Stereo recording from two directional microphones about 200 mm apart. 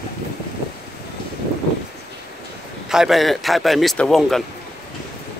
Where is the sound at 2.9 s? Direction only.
Centre (ahead or behind).